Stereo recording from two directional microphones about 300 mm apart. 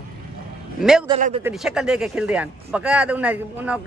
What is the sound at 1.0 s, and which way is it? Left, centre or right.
Speech, centre.